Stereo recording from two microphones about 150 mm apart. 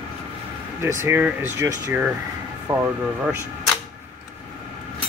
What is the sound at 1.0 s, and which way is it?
Speech, 15° right (ahead or behind).